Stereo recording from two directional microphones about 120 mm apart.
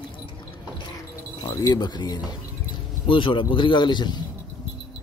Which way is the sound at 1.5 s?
30° left (ahead or behind).